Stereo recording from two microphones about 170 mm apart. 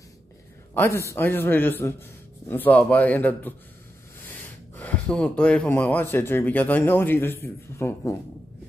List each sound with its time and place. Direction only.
0.7 s a man's voice: 15° left (ahead or behind)